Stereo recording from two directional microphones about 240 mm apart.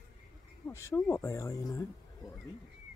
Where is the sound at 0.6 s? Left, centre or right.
Centre.